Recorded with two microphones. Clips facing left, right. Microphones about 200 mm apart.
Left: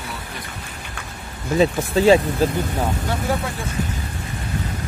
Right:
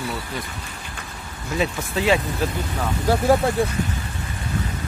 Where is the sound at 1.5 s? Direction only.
35° left (ahead or behind).